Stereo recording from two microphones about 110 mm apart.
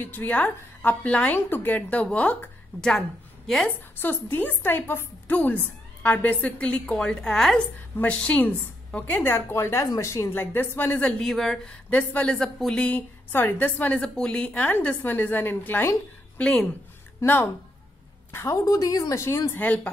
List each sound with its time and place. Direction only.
0.0 s a woman's voice: 15° left (ahead or behind)
4.0 s a woman's voice: 20° left (ahead or behind)
11.1 s a man's voice: 5° left (ahead or behind)
11.9 s a woman's voice: 15° left (ahead or behind)
17.2 s a woman's voice: 20° left (ahead or behind)
19.6 s a woman's voice: 15° left (ahead or behind)